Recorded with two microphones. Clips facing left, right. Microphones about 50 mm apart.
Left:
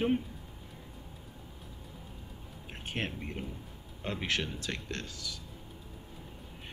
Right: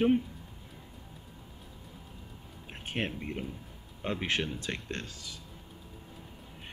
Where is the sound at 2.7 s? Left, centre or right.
Centre.